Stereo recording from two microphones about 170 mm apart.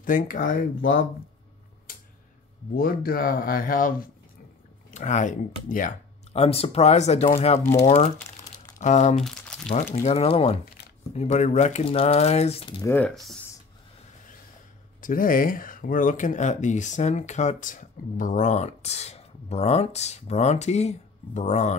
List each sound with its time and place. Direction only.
0.0 s speech: 50° left (ahead or behind)
2.7 s speech: 60° left (ahead or behind)
4.9 s speech: 45° left (ahead or behind)
6.3 s speech: 35° left (ahead or behind)
9.1 s speech: centre (ahead or behind)
10.0 s speech: 35° left (ahead or behind)
12.8 s speech: 10° left (ahead or behind)
15.0 s speech: 55° left (ahead or behind)